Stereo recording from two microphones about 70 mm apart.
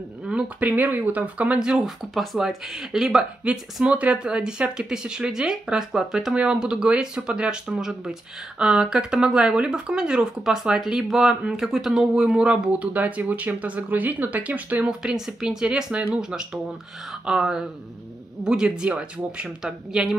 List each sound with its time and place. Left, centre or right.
0.3 s speech: centre
14.9 s speech: centre